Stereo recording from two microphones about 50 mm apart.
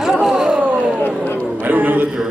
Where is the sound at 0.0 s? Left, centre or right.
Centre.